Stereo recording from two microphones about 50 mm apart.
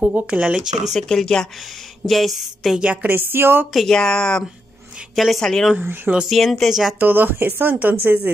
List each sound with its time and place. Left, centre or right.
0.0 s speech: right
0.3 s speech: centre
1.0 s speech: centre
2.0 s a sound: centre
2.8 s a woman's voice: right
3.1 s speech: right
3.9 s speech: centre
5.1 s speech: centre
6.2 s a sound: centre
7.0 s speech: right